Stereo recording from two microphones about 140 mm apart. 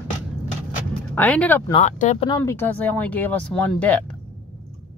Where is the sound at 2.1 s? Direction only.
35° left (ahead or behind).